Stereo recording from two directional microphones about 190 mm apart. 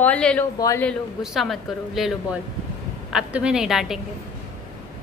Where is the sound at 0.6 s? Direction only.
15° left (ahead or behind).